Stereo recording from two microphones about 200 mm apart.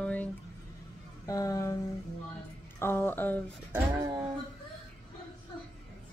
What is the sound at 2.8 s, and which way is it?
Music, 10° left (ahead or behind).